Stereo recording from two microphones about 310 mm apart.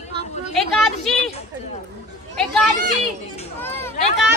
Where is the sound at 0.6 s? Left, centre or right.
Centre.